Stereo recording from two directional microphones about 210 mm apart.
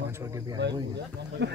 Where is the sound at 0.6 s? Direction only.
55° right (ahead or behind).